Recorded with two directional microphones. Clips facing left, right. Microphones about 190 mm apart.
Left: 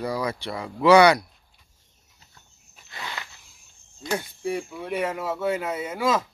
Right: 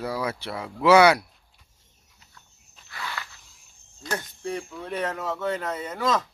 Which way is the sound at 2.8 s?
20° left (ahead or behind).